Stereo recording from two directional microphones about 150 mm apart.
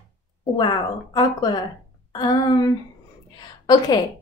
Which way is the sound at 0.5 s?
30° left (ahead or behind).